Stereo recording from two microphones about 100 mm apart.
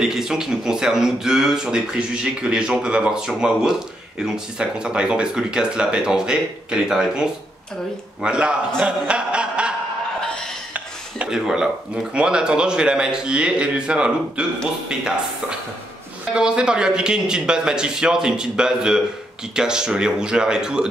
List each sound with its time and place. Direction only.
0.0 s a man's voice: 5° right (ahead or behind)
10.2 s a sound: 10° left (ahead or behind)
10.7 s speech: 10° right (ahead or behind)
16.3 s speech: 10° right (ahead or behind)